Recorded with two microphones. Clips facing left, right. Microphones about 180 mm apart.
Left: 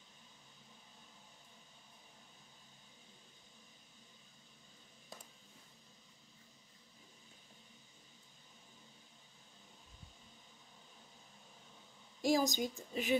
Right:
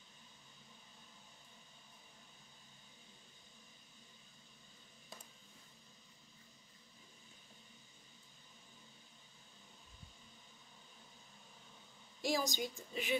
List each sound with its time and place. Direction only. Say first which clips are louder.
12.2 s a woman's voice: left 5 dB; 40° left (ahead or behind)